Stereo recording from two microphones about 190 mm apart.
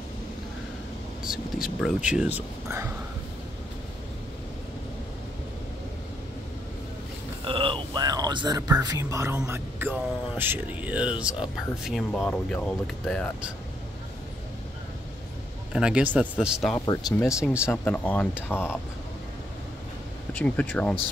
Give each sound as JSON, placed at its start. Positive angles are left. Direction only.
{"t": 1.8, "sound": "speech", "side_deg": -5}
{"t": 7.4, "sound": "a sound", "side_deg": -25}
{"t": 8.8, "sound": "speech", "side_deg": -15}
{"t": 15.7, "sound": "speech", "side_deg": -5}
{"t": 16.7, "sound": "speech", "side_deg": 15}
{"t": 17.4, "sound": "speech", "side_deg": -5}
{"t": 17.8, "sound": "speech", "side_deg": 10}
{"t": 20.3, "sound": "speech", "side_deg": 5}